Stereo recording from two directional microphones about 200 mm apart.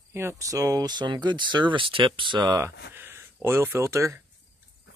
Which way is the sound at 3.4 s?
10° right (ahead or behind).